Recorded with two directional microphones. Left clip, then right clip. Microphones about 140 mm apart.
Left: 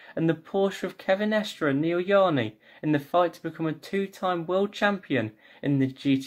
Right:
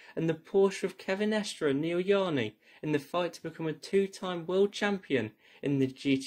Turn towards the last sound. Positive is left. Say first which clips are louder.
# left 4 dB
turn(degrees=-25)  # may be behind; listen again after turning